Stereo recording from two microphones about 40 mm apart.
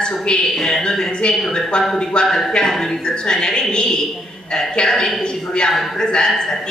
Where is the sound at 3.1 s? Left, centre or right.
Centre.